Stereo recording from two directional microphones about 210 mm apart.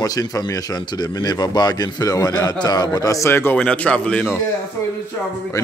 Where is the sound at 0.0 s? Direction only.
15° left (ahead or behind).